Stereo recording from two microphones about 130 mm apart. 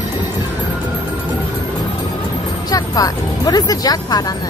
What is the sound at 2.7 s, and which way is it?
Music, 30° left (ahead or behind).